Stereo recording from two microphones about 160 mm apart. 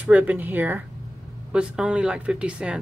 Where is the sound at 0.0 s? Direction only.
10° right (ahead or behind).